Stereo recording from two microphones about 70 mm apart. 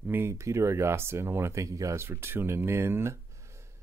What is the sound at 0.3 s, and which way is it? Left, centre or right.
Speech, right.